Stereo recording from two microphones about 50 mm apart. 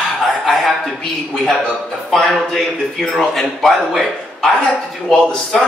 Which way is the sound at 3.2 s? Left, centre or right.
Centre.